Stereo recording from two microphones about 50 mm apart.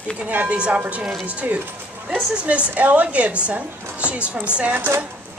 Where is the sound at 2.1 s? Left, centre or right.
Right.